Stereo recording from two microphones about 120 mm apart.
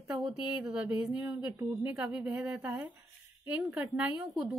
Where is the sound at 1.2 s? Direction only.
20° right (ahead or behind).